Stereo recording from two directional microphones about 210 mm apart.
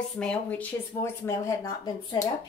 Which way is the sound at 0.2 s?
5° left (ahead or behind).